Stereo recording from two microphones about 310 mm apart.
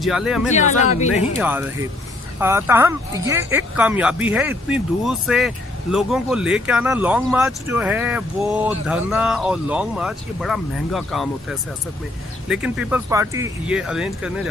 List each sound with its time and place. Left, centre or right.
0.0 s speech: centre
0.5 s speech: left
1.4 s speech: centre
12.4 s speech: centre